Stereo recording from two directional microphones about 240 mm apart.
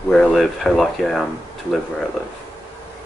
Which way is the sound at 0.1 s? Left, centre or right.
Centre.